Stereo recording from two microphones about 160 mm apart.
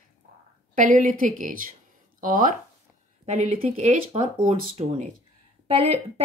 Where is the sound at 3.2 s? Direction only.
45° right (ahead or behind).